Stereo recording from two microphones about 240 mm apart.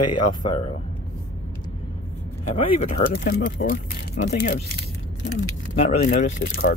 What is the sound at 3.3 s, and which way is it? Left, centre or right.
Speech, left.